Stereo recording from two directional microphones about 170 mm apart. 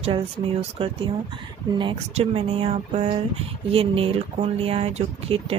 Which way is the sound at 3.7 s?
35° right (ahead or behind).